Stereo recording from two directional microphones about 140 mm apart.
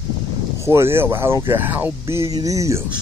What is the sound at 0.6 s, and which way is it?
Speech, 20° right (ahead or behind).